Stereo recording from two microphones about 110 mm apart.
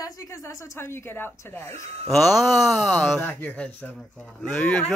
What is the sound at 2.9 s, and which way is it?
Speech, 10° left (ahead or behind).